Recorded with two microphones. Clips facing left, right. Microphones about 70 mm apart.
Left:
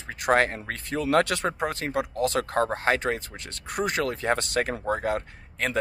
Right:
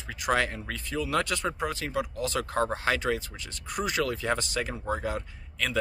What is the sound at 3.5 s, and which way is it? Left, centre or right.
Speech, left.